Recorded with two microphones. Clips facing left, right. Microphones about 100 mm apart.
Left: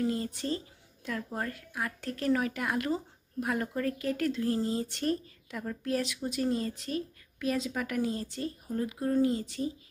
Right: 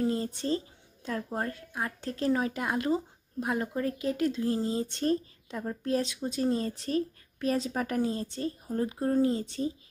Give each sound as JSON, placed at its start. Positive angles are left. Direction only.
{"t": 0.0, "sound": "a woman's voice", "side_deg": -30}